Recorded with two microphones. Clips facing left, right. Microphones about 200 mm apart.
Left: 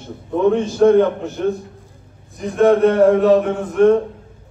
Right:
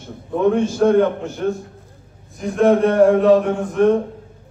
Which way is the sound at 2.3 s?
Centre (ahead or behind).